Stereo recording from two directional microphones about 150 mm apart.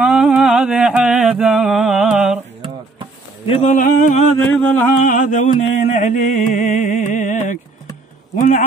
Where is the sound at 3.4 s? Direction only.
45° left (ahead or behind); by 4.2 s 60° left (ahead or behind).